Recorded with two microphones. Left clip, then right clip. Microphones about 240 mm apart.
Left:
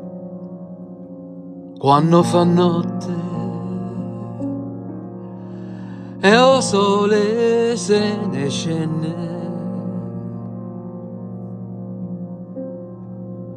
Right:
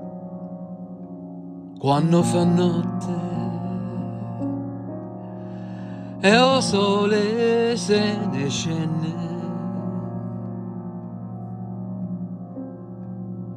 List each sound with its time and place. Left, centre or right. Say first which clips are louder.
1.8 s music: left 7 dB; centre
6.2 s music: left 4 dB; centre